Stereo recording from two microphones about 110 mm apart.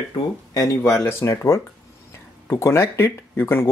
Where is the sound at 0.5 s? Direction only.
25° left (ahead or behind).